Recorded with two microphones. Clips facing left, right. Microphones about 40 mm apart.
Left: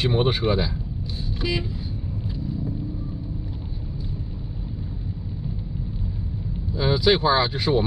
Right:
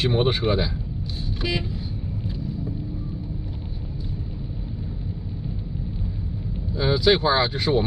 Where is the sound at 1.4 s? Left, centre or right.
Centre.